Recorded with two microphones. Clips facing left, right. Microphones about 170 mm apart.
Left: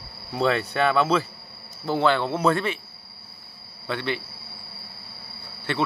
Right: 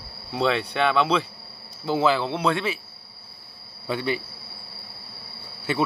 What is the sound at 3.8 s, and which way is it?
Speech, 10° right (ahead or behind).